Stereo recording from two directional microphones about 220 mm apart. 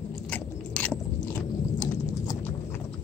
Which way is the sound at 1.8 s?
15° left (ahead or behind).